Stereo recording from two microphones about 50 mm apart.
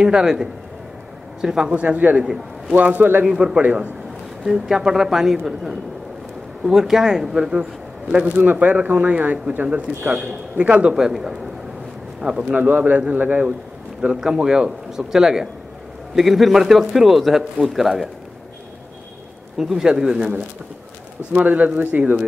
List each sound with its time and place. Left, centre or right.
0.0 s speech: centre
1.7 s speech: right
3.3 s speech: centre
3.6 s speech: right
4.5 s speech: centre
6.6 s speech: centre
8.4 s speech: right
10.6 s speech: right
11.0 s speech: centre
12.5 s speech: right
14.2 s speech: centre
19.5 s speech: centre; by 22.2 s right